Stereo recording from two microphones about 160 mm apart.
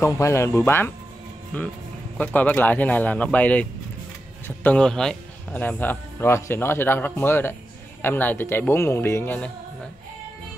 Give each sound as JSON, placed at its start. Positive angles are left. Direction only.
{"t": 0.0, "sound": "speech", "side_deg": 20}
{"t": 2.1, "sound": "speech", "side_deg": 10}